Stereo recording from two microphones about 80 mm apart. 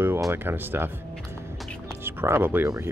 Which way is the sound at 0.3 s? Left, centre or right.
Right.